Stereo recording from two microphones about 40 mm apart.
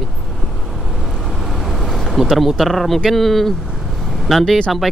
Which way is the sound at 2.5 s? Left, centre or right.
Centre.